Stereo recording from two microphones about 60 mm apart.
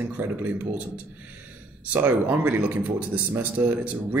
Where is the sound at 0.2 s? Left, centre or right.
Right.